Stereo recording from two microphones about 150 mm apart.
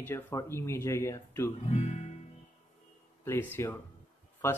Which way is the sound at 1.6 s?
50° left (ahead or behind).